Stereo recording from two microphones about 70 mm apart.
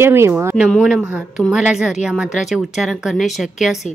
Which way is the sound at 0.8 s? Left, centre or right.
Centre.